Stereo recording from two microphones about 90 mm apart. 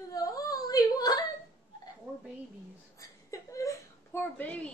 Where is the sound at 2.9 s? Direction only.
35° left (ahead or behind).